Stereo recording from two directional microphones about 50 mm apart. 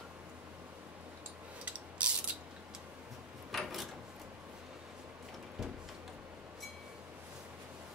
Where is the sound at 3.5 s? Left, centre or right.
Centre.